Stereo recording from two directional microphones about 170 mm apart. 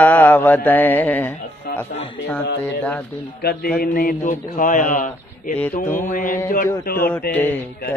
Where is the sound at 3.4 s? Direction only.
65° left (ahead or behind).